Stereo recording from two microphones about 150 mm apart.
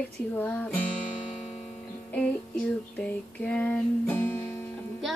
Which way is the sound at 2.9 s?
10° left (ahead or behind).